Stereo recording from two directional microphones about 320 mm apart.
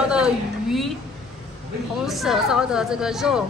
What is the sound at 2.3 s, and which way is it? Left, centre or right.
A woman's voice, centre.